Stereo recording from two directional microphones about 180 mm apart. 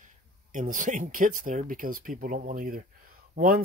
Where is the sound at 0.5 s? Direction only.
45° right (ahead or behind).